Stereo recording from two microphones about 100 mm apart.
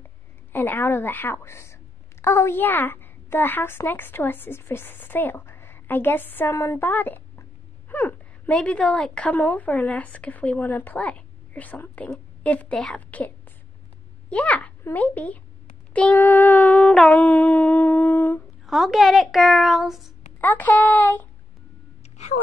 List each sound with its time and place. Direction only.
0.5 s a woman's voice: 20° left (ahead or behind); by 13.0 s 5° left (ahead or behind)
14.3 s speech: 15° left (ahead or behind)
15.9 s a sound: 15° left (ahead or behind)
16.9 s a woman's voice: 5° left (ahead or behind)
17.2 s humming: 15° left (ahead or behind)
18.7 s a woman's voice: centre (ahead or behind)
20.3 s speech: 20° left (ahead or behind)